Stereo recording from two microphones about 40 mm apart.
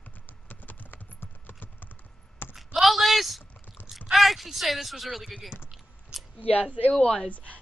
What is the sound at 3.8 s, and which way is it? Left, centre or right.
Biting, left.